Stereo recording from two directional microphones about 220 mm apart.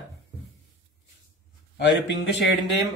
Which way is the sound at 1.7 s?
55° left (ahead or behind).